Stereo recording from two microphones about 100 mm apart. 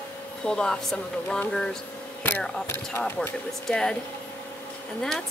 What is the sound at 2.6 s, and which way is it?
Speech, 25° left (ahead or behind).